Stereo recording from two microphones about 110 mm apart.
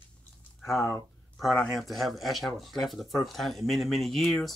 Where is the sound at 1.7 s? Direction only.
Centre (ahead or behind).